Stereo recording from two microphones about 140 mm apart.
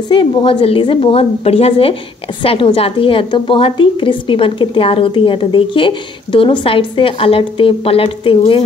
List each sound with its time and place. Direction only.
0.1 s a woman's voice: 35° left (ahead or behind)